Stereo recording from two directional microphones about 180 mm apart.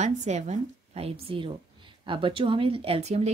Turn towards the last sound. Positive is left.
turn(degrees=-35)  # may be behind; listen again after turning